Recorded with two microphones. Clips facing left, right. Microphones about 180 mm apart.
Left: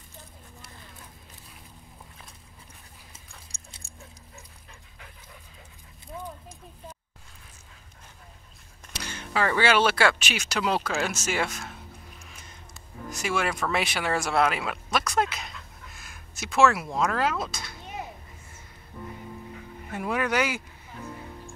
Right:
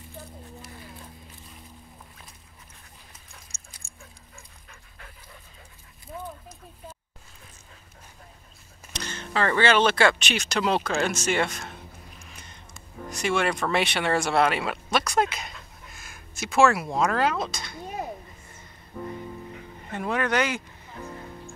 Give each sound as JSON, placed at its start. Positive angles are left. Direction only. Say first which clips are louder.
{"t": 3.1, "sound": "a sound", "louder": "even", "side_deg": 30}
{"t": 8.9, "sound": "speech", "louder": "right 1 dB", "side_deg": 10}
{"t": 13.1, "sound": "speech", "louder": "right 3 dB", "side_deg": 5}
{"t": 19.9, "sound": "speech", "louder": "right 1 dB", "side_deg": 5}